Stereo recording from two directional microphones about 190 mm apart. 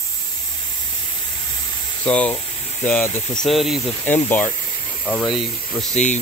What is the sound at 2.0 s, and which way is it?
Cricket, 5° left (ahead or behind).